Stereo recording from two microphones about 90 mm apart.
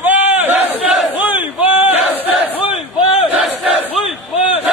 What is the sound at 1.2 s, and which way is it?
Battle cry, 20° right (ahead or behind).